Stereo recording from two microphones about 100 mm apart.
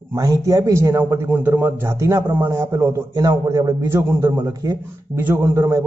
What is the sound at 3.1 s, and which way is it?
Speech, 35° right (ahead or behind).